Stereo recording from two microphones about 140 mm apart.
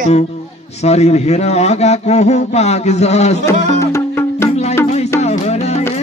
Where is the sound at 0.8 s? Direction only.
50° left (ahead or behind).